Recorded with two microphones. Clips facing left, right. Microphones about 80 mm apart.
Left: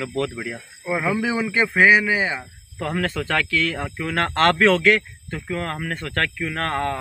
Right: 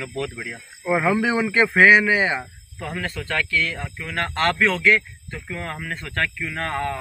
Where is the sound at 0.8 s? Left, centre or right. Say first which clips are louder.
Right 3 dB; centre.